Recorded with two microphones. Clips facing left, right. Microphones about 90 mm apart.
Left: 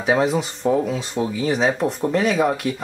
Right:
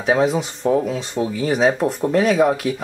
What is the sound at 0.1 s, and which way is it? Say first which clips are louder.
Speech: right 1 dB; centre (ahead or behind).